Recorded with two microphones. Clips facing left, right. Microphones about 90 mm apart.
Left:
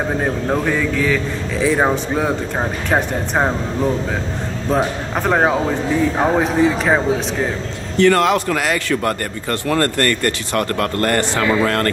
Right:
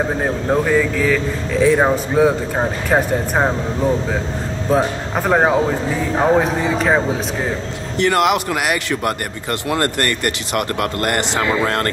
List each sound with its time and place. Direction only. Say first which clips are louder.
0.2 s speech: right 1 dB; 5° right (ahead or behind)
4.7 s speech: right 1 dB; 5° right (ahead or behind)
8.0 s speech: left 2 dB; 15° right (ahead or behind)